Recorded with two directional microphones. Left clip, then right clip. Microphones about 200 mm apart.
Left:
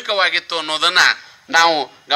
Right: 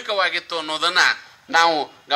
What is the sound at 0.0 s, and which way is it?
A man's voice, 35° left (ahead or behind).